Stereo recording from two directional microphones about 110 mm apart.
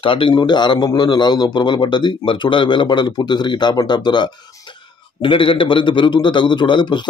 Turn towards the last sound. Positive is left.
turn(degrees=45)  # may be behind; listen again after turning